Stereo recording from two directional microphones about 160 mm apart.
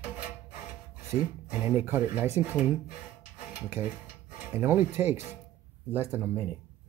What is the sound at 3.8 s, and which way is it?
Speech, 15° right (ahead or behind).